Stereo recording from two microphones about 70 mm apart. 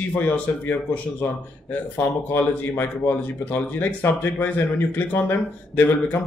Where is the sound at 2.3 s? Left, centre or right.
Left.